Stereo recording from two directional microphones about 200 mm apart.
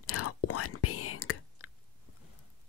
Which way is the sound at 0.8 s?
90° left.